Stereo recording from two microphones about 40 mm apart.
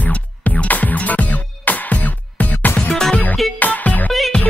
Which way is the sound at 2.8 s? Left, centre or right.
Centre.